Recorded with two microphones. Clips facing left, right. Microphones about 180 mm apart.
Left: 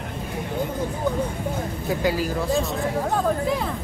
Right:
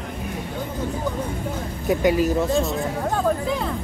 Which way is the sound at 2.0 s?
20° right (ahead or behind).